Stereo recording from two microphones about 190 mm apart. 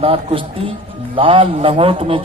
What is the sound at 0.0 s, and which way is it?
A man's voice, 30° right (ahead or behind).